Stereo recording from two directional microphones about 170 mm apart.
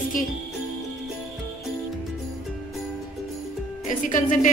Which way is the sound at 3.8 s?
50° left (ahead or behind).